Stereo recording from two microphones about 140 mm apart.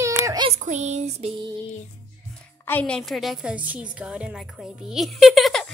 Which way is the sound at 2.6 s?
10° left (ahead or behind).